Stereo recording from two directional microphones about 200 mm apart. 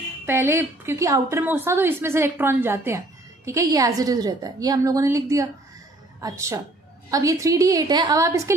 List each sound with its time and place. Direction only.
0.3 s a woman's voice: 10° right (ahead or behind)